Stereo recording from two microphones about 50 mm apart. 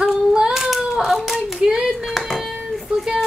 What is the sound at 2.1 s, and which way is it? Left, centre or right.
Speech, centre.